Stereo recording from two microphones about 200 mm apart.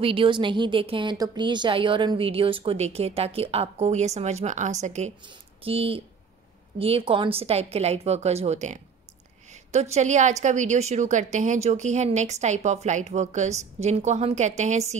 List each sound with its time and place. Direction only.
0.0 s a woman's voice: 25° right (ahead or behind)